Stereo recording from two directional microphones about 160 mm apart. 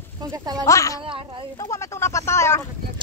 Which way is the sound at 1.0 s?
30° right (ahead or behind).